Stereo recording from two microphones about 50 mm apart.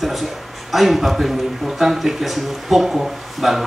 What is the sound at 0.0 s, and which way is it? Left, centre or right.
A man's voice, centre.